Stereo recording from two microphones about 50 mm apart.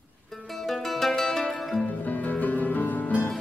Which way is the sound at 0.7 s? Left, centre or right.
Centre.